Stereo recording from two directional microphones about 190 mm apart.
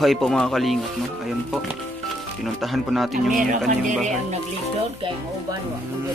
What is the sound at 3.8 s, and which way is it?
Speech, 40° right (ahead or behind).